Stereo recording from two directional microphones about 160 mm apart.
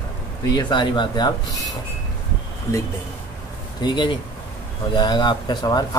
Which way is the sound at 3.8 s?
30° left (ahead or behind).